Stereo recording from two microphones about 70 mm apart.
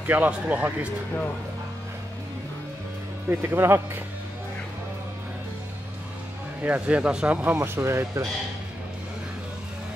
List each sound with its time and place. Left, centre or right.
0.0 s speech: right
3.3 s speech: right
6.6 s speech: centre
7.5 s speech: right